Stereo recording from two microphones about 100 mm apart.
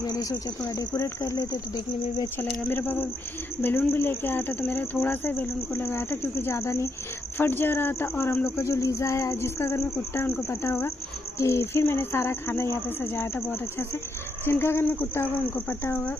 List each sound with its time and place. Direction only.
0.0 s speech: 35° left (ahead or behind)
2.3 s cricket: 20° left (ahead or behind)